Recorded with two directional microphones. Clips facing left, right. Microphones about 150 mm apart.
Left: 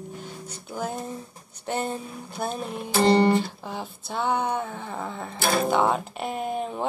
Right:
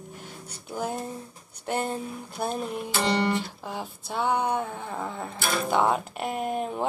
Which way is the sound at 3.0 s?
40° left (ahead or behind).